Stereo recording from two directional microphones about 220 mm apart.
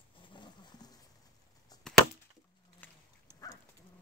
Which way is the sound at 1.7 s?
15° left (ahead or behind).